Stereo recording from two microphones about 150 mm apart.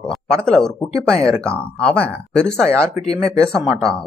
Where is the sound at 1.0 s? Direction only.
5° left (ahead or behind).